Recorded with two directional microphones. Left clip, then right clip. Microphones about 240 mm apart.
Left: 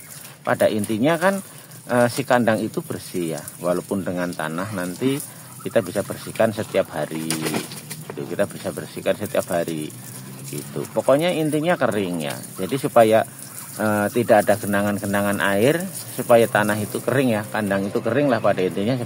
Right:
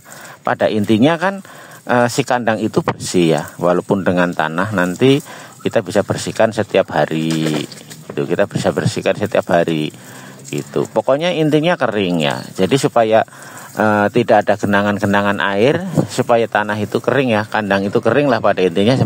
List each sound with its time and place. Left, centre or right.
0.5 s speech: right
8.3 s speech: right